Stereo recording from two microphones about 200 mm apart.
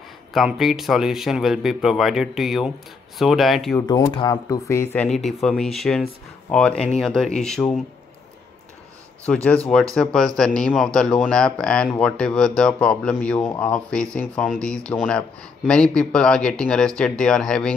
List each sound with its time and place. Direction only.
0.3 s speech: centre (ahead or behind)
3.7 s speech: 15° left (ahead or behind)
9.2 s speech: 5° left (ahead or behind)